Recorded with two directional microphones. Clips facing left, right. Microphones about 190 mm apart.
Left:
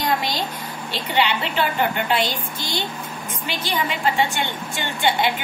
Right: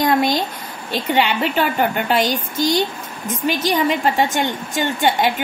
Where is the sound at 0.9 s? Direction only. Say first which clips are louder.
Right 4 dB; 45° right (ahead or behind).